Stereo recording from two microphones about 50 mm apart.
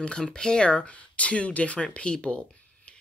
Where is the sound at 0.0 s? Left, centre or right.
Centre.